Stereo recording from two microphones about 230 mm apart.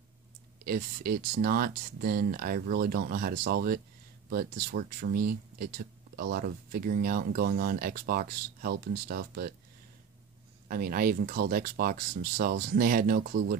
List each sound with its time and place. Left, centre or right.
0.7 s speech: right
10.7 s speech: right